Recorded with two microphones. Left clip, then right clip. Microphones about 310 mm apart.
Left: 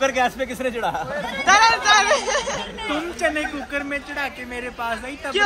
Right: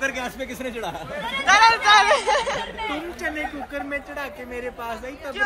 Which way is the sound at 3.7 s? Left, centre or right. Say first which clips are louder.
Left 5 dB; centre.